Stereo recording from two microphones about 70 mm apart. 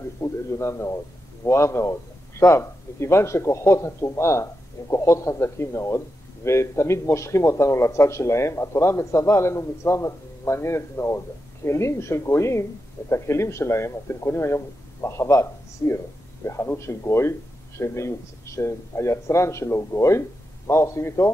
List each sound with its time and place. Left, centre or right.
0.2 s a man's voice: left